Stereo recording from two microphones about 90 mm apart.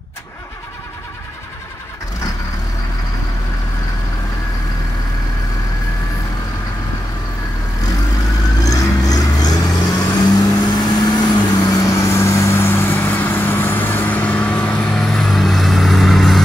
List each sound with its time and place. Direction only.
8.5 s vehicle: 45° left (ahead or behind); by 16.4 s centre (ahead or behind)